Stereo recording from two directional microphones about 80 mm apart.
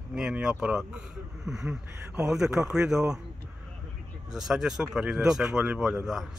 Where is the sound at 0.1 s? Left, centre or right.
Centre.